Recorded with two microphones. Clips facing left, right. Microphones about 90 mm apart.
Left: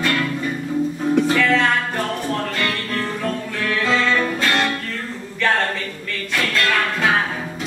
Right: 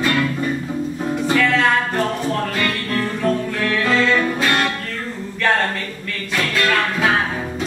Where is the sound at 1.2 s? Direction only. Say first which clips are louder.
Even; centre (ahead or behind).